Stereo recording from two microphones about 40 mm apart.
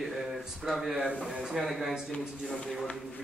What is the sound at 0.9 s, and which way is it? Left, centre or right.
Speech, right.